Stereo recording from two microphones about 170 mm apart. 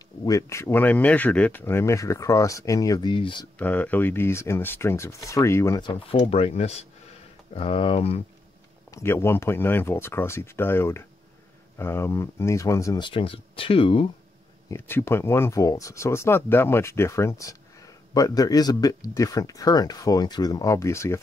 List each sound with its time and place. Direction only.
0.2 s speech: 20° left (ahead or behind)
3.5 s speech: 10° left (ahead or behind)
5.8 s speech: 30° left (ahead or behind)
8.9 s speech: 15° left (ahead or behind); by 14.0 s 30° left (ahead or behind)
14.7 s speech: 15° left (ahead or behind)